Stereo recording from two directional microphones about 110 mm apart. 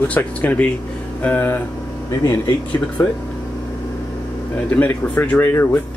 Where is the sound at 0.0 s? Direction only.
15° left (ahead or behind).